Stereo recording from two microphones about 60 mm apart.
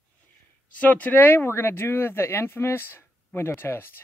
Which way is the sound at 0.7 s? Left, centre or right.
Left.